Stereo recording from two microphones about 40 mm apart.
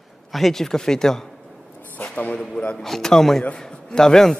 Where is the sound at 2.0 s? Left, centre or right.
Left.